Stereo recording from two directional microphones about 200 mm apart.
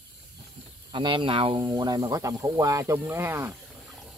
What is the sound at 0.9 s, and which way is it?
Speech, 25° right (ahead or behind).